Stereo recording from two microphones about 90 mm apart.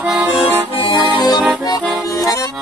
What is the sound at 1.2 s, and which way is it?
Accordion, 60° left (ahead or behind).